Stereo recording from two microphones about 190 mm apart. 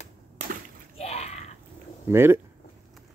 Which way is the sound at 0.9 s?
35° left (ahead or behind).